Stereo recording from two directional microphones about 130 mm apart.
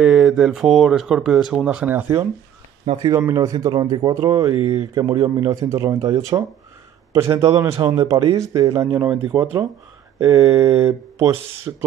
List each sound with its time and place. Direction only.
0.0 s speech: 5° right (ahead or behind)
2.9 s mantra: 45° right (ahead or behind)
3.2 s a man's voice: 25° right (ahead or behind)
10.2 s mantra: 40° right (ahead or behind)
10.8 s speech: 20° right (ahead or behind)